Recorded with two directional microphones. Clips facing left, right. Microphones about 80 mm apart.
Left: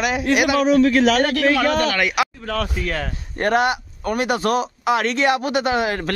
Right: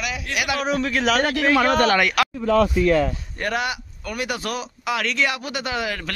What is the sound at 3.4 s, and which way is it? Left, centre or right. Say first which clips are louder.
Speech: left 8 dB; left.